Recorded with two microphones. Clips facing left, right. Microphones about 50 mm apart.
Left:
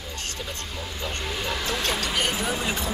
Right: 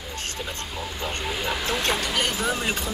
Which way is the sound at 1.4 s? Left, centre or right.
Centre.